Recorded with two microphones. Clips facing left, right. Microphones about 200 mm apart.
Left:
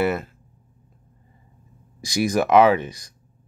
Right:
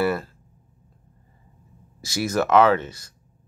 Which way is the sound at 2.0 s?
15° left (ahead or behind).